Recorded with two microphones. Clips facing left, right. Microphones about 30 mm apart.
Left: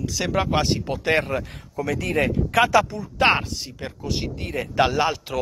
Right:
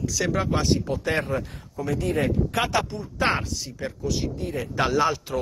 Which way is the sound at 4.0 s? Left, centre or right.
Left.